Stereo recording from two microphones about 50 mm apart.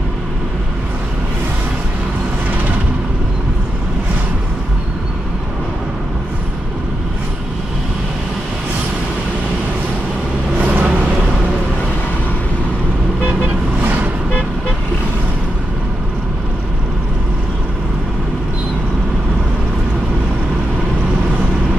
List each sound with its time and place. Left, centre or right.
10.6 s vehicle: right
13.8 s vehicle: right